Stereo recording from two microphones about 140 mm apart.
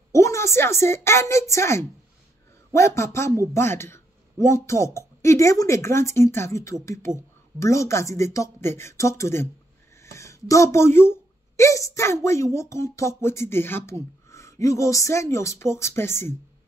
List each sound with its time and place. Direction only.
0.1 s a woman's voice: 20° left (ahead or behind)